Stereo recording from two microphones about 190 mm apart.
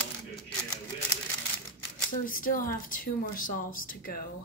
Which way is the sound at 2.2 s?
45° left (ahead or behind).